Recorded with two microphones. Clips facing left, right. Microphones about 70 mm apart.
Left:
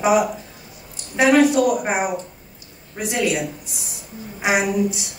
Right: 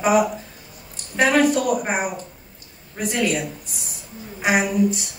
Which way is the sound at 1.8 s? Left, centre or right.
Centre.